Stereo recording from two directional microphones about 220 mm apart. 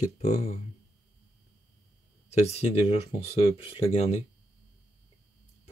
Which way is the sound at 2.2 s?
30° left (ahead or behind).